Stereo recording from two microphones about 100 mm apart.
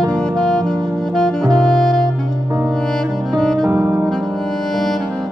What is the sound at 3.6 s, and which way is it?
Music, 35° right (ahead or behind).